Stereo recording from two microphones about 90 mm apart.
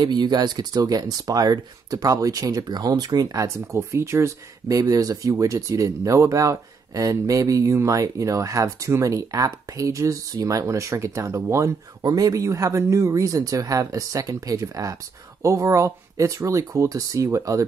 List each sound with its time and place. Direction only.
0.0 s speech: 50° right (ahead or behind); by 11.7 s 35° right (ahead or behind)
12.0 s speech: 45° right (ahead or behind)